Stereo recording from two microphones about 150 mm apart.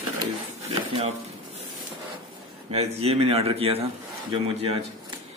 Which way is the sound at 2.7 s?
45° right (ahead or behind).